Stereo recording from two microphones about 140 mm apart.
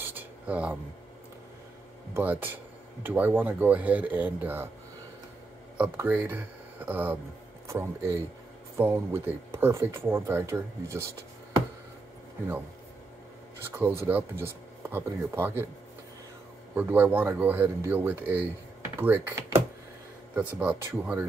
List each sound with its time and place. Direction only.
0.0 s a sound: 15° right (ahead or behind)
2.1 s speech: 15° right (ahead or behind)
5.8 s speech: 10° right (ahead or behind)
13.6 s speech: 15° right (ahead or behind)
16.7 s speech: 15° right (ahead or behind)
20.3 s speech: 10° right (ahead or behind)